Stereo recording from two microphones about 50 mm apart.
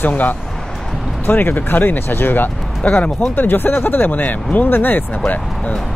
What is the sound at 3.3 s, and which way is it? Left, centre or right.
Speech, left.